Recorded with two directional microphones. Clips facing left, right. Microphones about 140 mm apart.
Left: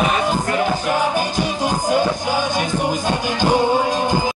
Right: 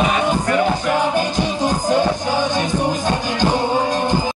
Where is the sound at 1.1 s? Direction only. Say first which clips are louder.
Right 1 dB; 10° left (ahead or behind).